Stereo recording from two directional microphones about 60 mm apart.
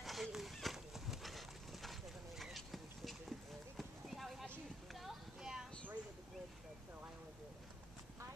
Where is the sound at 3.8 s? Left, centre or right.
Centre.